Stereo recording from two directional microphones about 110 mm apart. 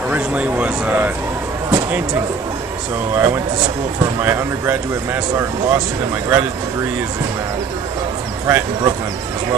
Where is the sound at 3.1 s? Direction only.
20° right (ahead or behind).